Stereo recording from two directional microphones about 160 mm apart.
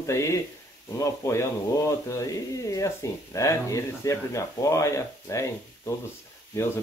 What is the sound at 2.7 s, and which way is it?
Speech, 20° left (ahead or behind).